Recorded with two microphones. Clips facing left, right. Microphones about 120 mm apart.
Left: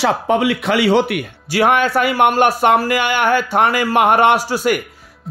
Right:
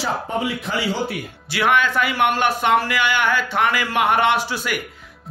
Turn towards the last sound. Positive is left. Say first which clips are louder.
# left 6 dB
turn(degrees=40)  # may be behind; listen again after turning